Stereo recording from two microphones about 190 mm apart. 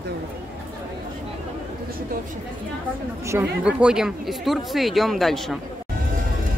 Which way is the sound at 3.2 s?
10° right (ahead or behind).